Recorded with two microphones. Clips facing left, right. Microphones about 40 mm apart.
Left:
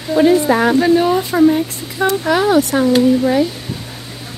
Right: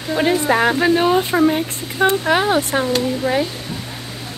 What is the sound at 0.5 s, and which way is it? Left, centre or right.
Speech, right.